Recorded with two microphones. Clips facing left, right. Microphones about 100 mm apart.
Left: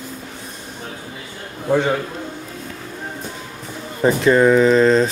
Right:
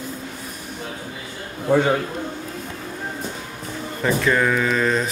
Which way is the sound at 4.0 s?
25° left (ahead or behind).